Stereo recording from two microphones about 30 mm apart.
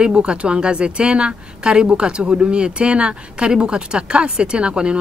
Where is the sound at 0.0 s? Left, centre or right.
Right.